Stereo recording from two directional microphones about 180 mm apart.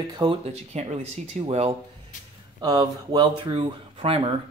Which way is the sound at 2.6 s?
20° right (ahead or behind).